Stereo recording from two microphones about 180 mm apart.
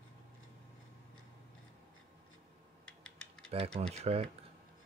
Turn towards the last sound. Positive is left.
turn(degrees=-35)  # may be behind; listen again after turning